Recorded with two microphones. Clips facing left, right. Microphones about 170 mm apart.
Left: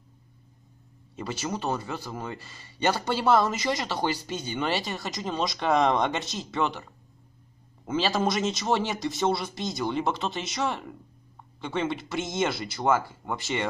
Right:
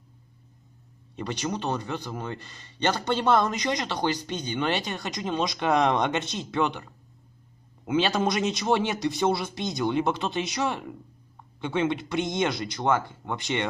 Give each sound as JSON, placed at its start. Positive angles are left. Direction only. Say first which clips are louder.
{"t": 1.1, "sound": "a man's voice", "louder": "right 2 dB", "side_deg": 5}